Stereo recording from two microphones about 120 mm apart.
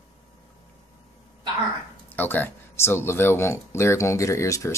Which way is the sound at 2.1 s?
15° left (ahead or behind).